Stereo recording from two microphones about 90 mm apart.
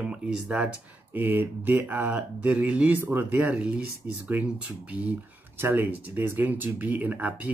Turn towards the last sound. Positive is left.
turn(degrees=-20)  # may be behind; listen again after turning